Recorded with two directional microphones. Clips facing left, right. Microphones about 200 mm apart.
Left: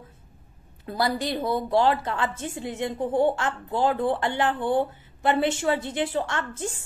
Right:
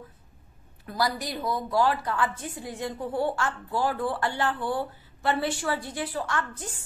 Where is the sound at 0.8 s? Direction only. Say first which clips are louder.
Left 3 dB; 25° left (ahead or behind).